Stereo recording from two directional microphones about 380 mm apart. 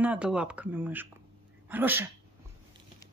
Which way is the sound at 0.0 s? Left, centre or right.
Centre.